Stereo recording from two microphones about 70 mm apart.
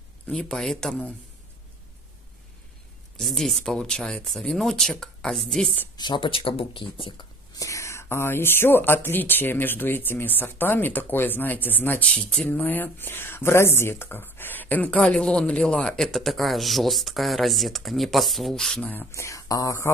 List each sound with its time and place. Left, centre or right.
0.6 s speech: centre
3.2 s speech: centre
5.9 s speech: left
7.2 s speech: left
12.0 s speech: centre
12.4 s speech: left
16.1 s speech: centre
18.8 s speech: left
19.1 s speech: left